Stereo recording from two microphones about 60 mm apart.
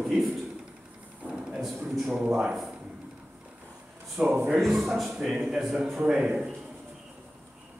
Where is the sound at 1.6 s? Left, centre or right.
Centre.